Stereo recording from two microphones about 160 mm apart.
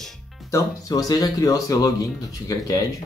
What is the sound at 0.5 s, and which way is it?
Speech, 20° left (ahead or behind).